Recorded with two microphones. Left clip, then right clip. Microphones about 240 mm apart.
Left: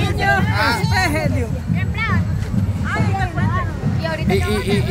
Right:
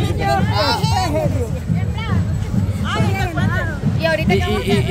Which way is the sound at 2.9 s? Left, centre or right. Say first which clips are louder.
Right 1 dB; right.